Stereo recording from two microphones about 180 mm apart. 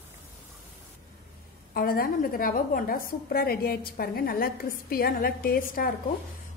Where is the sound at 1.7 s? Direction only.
55° left (ahead or behind).